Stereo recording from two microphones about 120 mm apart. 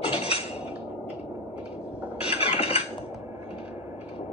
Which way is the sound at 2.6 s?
60° left (ahead or behind).